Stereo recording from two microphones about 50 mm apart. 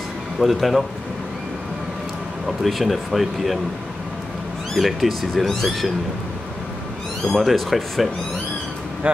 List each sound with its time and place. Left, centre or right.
0.4 s speech: centre
2.4 s speech: centre
4.7 s speech: centre
7.2 s speech: centre
9.0 s speech: right